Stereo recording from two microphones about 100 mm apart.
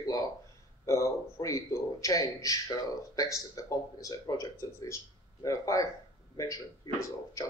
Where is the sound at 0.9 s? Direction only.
30° left (ahead or behind).